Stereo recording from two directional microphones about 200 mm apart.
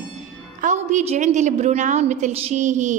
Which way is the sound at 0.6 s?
40° right (ahead or behind).